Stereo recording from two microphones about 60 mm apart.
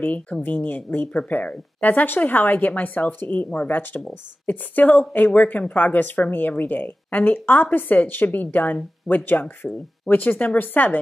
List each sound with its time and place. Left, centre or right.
0.0 s speech: left